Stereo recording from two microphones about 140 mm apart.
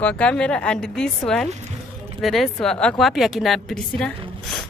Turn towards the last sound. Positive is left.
turn(degrees=5)  # may be behind; listen again after turning